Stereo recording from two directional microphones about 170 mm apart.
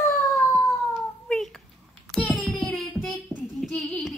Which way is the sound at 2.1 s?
5° left (ahead or behind).